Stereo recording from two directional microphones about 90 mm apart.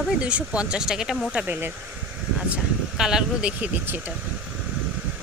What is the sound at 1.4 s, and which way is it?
Speech, 25° right (ahead or behind).